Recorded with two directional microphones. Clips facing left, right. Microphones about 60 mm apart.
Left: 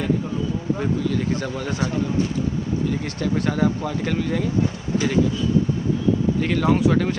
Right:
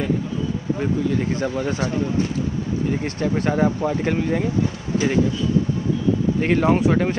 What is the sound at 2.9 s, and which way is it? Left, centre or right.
Speech, right.